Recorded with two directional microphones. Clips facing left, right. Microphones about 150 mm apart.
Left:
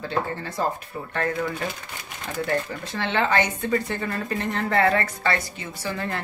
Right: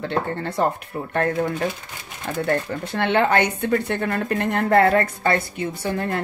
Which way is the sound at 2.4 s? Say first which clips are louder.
Right 3 dB; 60° right (ahead or behind).